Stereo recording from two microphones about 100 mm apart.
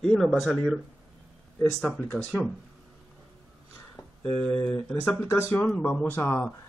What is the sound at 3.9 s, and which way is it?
Speech, 15° left (ahead or behind).